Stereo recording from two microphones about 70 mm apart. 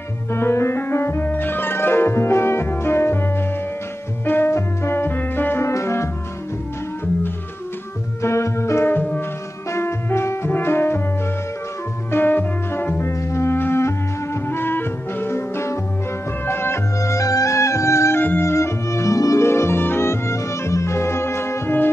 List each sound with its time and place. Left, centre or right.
0.3 s music: left
8.2 s organ: left
9.7 s music: left
12.1 s music: left
13.0 s music: left
17.0 s music: left